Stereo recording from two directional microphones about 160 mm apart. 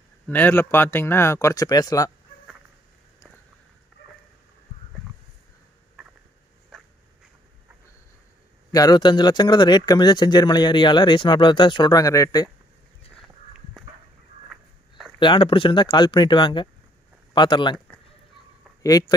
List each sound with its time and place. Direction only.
0.3 s speech: 10° left (ahead or behind)
8.7 s speech: 25° left (ahead or behind)
14.5 s walk: centre (ahead or behind)
15.1 s speech: 30° left (ahead or behind)
17.7 s a sound: 5° left (ahead or behind)
18.8 s speech: 25° left (ahead or behind)